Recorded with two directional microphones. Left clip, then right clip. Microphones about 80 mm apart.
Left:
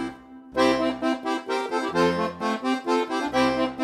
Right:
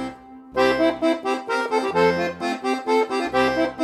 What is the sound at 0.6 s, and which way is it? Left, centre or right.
Accordion, right.